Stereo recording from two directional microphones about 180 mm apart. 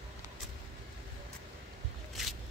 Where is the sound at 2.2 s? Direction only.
Centre (ahead or behind).